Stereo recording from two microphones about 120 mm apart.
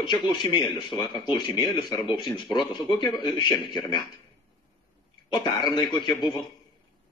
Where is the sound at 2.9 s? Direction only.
40° left (ahead or behind).